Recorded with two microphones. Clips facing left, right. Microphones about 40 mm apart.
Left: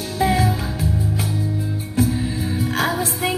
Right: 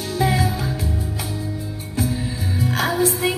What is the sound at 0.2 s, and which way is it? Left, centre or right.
Music, left.